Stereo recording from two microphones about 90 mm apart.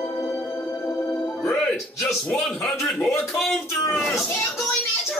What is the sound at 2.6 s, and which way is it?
Speech, 25° left (ahead or behind).